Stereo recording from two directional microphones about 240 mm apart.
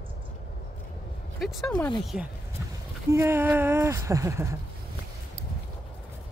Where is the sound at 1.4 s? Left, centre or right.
Centre.